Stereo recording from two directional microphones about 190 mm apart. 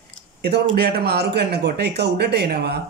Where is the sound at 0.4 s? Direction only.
60° right (ahead or behind).